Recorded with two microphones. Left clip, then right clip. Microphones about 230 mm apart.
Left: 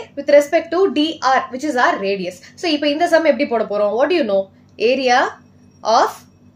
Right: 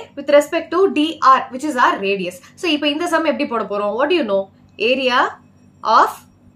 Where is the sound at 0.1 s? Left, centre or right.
Centre.